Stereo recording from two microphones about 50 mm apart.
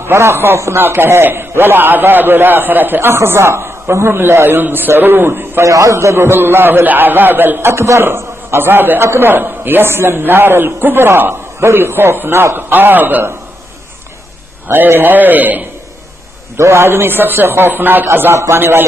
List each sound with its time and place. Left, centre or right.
0.0 s a man's voice: right
3.0 s a man's voice: right
4.2 s a man's voice: right
5.6 s a man's voice: right
6.1 s a man's voice: right
7.6 s a man's voice: right
14.7 s a man's voice: right
16.5 s a man's voice: right
16.8 s a man's voice: right
18.3 s a man's voice: right
18.6 s a man's voice: right